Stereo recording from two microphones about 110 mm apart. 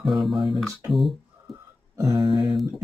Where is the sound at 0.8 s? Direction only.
Centre (ahead or behind).